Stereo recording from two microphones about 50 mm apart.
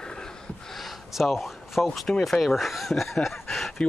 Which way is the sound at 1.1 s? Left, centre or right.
Centre.